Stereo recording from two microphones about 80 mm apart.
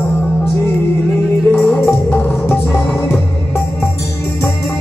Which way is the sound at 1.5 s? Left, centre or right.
Centre.